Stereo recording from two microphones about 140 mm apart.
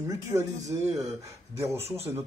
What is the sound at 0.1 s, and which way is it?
Speech, 25° right (ahead or behind).